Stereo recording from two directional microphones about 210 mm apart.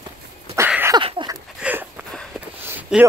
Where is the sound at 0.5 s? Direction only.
10° right (ahead or behind).